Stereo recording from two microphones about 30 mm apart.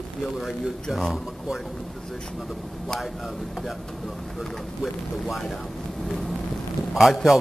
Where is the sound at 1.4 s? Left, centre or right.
Centre.